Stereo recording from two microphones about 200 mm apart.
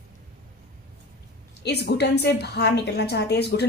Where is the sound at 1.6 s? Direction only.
55° left (ahead or behind).